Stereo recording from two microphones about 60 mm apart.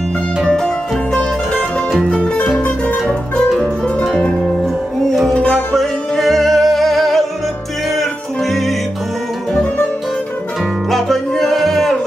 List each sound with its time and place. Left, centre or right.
2.0 s music: centre
4.0 s music: centre
5.3 s music: centre
10.9 s music: centre